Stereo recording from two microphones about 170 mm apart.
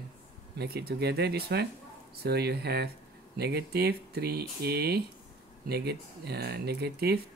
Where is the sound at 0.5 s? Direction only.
70° right (ahead or behind).